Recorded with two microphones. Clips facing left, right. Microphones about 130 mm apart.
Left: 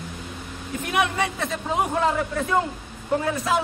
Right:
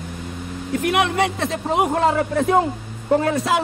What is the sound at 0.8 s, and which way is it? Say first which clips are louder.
A man's voice: right 4 dB; 70° right (ahead or behind).